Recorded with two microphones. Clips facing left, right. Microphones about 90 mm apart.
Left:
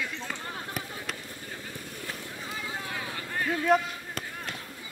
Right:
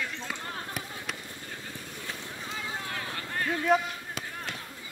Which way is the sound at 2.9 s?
15° left (ahead or behind).